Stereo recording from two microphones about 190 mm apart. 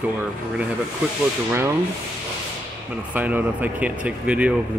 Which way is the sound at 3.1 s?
10° right (ahead or behind).